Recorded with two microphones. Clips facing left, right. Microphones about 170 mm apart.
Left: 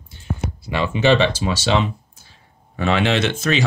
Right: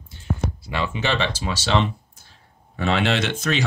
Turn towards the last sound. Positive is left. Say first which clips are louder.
# left 4 dB
turn(degrees=0)  # may be behind; listen again after turning